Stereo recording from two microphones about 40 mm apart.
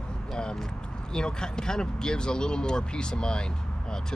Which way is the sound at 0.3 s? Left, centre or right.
Left.